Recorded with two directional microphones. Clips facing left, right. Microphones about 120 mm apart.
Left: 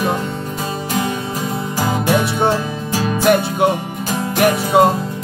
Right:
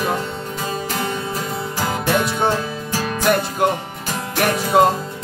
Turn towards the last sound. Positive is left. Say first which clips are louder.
# left 2 dB
turn(degrees=0)  # may be behind; listen again after turning